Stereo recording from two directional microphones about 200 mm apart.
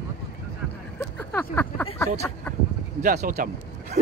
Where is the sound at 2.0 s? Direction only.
10° left (ahead or behind).